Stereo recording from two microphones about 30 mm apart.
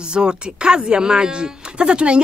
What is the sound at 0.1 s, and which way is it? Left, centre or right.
Speech, right.